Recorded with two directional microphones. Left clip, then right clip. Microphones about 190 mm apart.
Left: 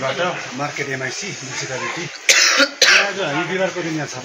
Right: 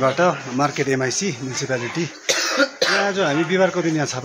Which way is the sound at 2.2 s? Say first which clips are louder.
Left 6 dB; 30° right (ahead or behind).